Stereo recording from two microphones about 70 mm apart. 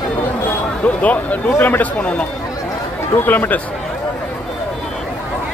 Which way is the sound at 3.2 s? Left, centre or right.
Left.